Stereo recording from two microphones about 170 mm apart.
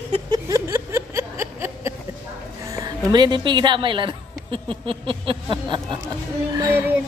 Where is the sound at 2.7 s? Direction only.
20° right (ahead or behind).